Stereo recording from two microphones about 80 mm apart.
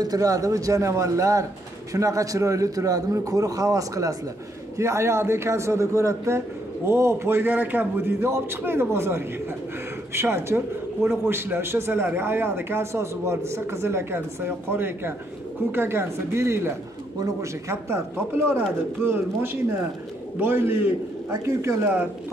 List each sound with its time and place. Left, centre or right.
0.0 s a man's voice: right